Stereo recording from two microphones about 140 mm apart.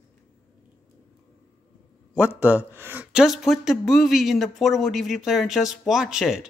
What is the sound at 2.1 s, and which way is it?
Speech, 10° right (ahead or behind).